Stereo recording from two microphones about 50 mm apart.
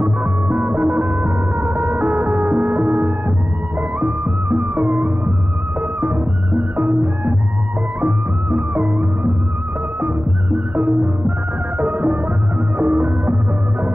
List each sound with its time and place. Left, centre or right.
0.0 s music: right